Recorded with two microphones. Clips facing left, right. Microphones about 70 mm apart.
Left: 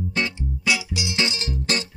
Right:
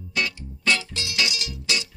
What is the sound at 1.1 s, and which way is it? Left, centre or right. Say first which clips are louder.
Music: left 2 dB; left.